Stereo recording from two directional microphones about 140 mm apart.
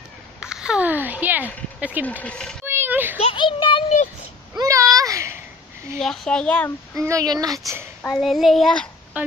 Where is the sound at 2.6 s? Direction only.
15° right (ahead or behind).